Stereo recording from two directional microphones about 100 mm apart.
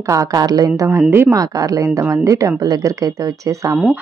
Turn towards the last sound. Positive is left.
turn(degrees=-35)  # may be behind; listen again after turning